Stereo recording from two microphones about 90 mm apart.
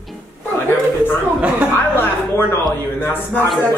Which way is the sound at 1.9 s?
25° left (ahead or behind).